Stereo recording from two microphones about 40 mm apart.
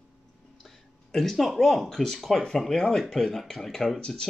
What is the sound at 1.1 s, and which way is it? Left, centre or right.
Speech, centre.